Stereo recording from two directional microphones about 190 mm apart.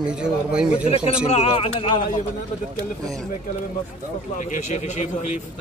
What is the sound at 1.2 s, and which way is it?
Speech, 30° left (ahead or behind).